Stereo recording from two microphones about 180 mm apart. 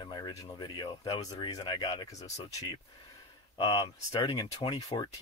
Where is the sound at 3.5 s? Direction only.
25° left (ahead or behind).